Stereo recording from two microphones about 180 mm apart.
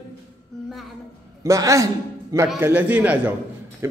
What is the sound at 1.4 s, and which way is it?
A man's voice, 15° right (ahead or behind).